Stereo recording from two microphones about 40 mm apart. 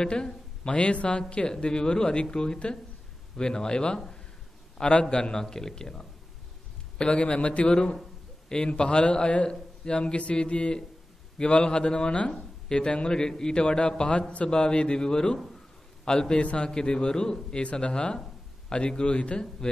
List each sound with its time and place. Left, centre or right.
0.0 s a man's voice: left